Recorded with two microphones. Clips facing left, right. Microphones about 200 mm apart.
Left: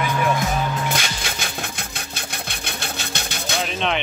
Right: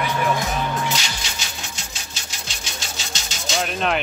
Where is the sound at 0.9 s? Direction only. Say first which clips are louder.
Left 2 dB; 55° left (ahead or behind).